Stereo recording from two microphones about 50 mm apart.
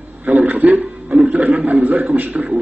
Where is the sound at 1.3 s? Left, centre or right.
Right.